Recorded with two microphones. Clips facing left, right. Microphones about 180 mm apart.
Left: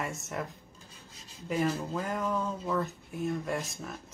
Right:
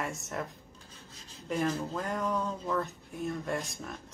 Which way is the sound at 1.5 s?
5° left (ahead or behind).